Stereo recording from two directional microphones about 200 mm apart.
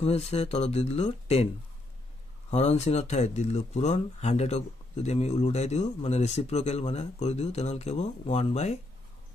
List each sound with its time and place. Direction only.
0.0 s speech: 30° left (ahead or behind)
2.5 s speech: 35° left (ahead or behind)